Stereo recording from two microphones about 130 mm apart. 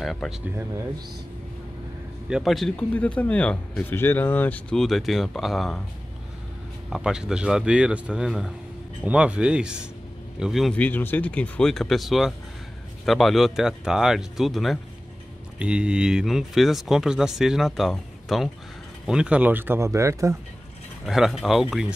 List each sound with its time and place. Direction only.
0.0 s speech: centre (ahead or behind)
2.2 s speech: 5° right (ahead or behind)
2.7 s speech: 10° left (ahead or behind)
6.9 s speech: 5° right (ahead or behind)
10.7 s speech: 15° left (ahead or behind); by 20.3 s 25° right (ahead or behind)
21.0 s speech: centre (ahead or behind)